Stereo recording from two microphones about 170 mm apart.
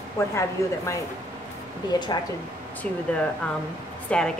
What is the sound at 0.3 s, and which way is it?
A woman's voice, 15° left (ahead or behind).